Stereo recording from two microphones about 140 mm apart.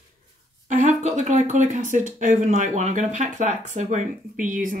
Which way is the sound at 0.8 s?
55° right (ahead or behind).